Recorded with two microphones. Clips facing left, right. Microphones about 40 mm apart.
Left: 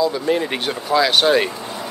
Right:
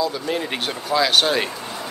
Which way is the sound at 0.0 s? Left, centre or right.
Centre.